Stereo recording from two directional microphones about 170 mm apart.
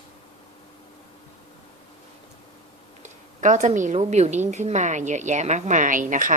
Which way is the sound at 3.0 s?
45° right (ahead or behind).